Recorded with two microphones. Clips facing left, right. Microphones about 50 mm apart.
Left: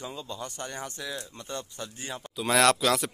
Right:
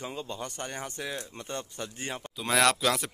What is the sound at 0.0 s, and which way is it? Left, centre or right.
Speech, right.